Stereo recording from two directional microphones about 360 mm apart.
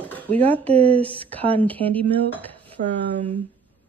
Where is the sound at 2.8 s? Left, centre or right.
Right.